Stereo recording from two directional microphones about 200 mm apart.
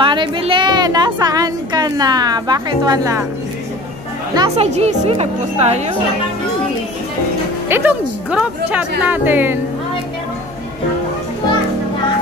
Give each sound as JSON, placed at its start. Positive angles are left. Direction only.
{"t": 0.0, "sound": "a woman's voice", "side_deg": -25}
{"t": 4.4, "sound": "speech", "side_deg": -30}
{"t": 7.6, "sound": "a woman's voice", "side_deg": -10}